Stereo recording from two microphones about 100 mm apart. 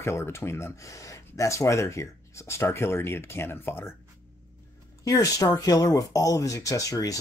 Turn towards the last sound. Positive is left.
turn(degrees=35)  # may be behind; listen again after turning